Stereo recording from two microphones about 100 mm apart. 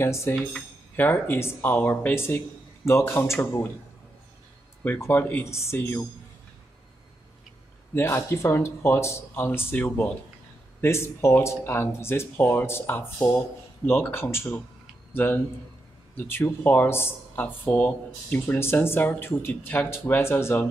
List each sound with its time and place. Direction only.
0.0 s speech: 25° left (ahead or behind)
5.0 s speech: 20° left (ahead or behind)
7.9 s speech: 25° left (ahead or behind)
10.8 s speech: 25° left (ahead or behind)
17.6 s speech: 10° left (ahead or behind)